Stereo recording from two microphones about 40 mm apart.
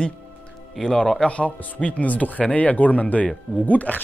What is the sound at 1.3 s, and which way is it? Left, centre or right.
Speech, left.